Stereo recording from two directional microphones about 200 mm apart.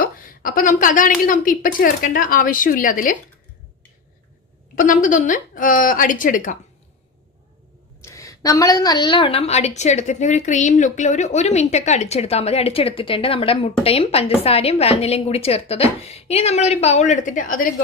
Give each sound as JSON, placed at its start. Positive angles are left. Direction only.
{"t": 0.0, "sound": "a woman's voice", "side_deg": 45}
{"t": 4.7, "sound": "a woman's voice", "side_deg": 40}
{"t": 8.0, "sound": "a woman's voice", "side_deg": 15}